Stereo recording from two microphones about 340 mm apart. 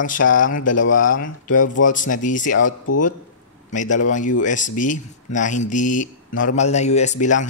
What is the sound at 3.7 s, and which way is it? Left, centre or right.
Speech, left.